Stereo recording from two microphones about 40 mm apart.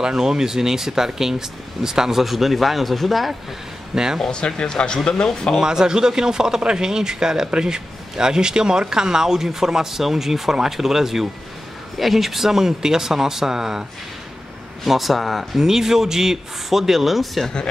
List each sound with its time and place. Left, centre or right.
0.0 s a man's voice: centre
3.9 s speech: centre
4.3 s speech: centre
5.6 s a man's voice: centre
14.9 s speech: centre
15.6 s a man's voice: centre